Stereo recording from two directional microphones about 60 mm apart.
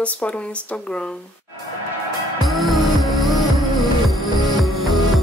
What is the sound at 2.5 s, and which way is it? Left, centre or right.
Music, centre.